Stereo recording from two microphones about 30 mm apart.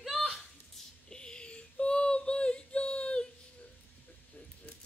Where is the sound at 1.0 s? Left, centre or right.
Left.